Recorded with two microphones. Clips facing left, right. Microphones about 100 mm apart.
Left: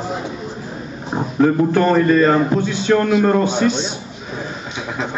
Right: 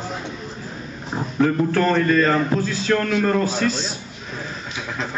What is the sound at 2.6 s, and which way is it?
A man's voice, centre (ahead or behind).